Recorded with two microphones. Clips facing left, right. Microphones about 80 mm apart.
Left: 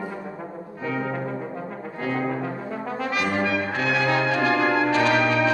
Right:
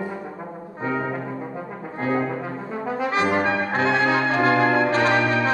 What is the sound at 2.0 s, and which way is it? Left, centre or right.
Brass instrument, right.